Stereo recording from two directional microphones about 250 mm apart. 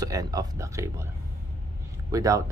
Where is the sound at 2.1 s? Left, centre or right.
Centre.